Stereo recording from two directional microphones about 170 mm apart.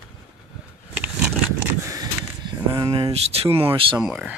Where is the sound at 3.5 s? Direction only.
30° right (ahead or behind).